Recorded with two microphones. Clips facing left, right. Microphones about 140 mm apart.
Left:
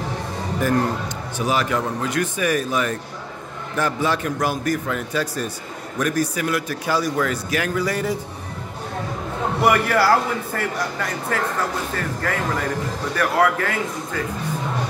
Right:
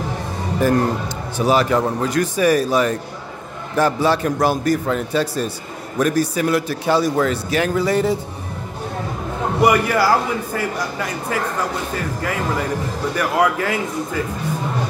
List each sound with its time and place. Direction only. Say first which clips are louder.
0.6 s a man's voice: right 4 dB; 30° right (ahead or behind)
9.6 s a man's voice: right 2 dB; 15° right (ahead or behind)